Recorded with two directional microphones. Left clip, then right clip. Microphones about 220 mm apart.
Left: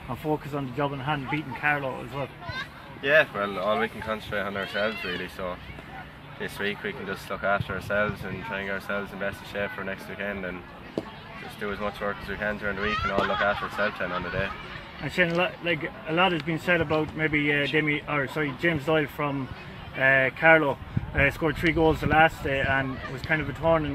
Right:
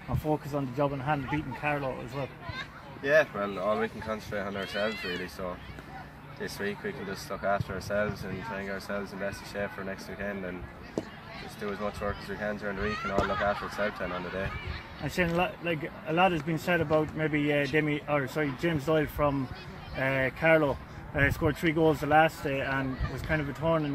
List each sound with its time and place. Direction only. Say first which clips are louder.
0.3 s speech: left 1 dB; 50° right (ahead or behind)
2.5 s speech: left 4 dB; 5° right (ahead or behind)
6.4 s speech: left 4 dB; 5° right (ahead or behind)
11.6 s speech: left 3 dB; 5° right (ahead or behind)
13.7 s speech: left 4 dB; 5° right (ahead or behind)
15.0 s speech: left 4 dB; 55° right (ahead or behind)